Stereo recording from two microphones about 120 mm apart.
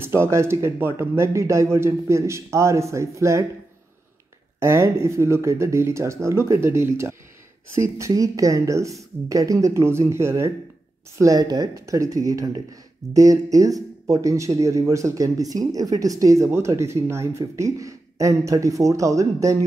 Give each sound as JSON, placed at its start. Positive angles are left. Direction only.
{"t": 0.0, "sound": "speech", "side_deg": -20}
{"t": 4.6, "sound": "speech", "side_deg": -20}